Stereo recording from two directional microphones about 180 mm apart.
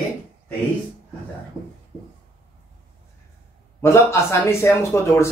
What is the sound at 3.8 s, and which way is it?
Speech, 15° left (ahead or behind).